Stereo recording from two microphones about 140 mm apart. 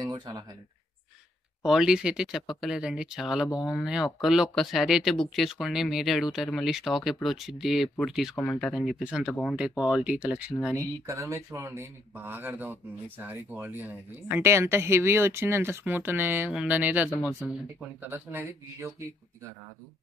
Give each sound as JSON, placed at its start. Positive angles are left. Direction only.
{"t": 0.0, "sound": "speech", "side_deg": -30}
{"t": 1.6, "sound": "speech", "side_deg": -5}
{"t": 10.8, "sound": "speech", "side_deg": -20}